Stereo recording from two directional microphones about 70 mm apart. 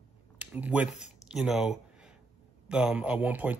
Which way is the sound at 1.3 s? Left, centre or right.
Centre.